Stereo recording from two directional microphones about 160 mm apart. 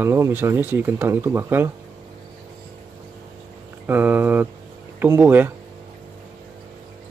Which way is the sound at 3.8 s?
10° right (ahead or behind).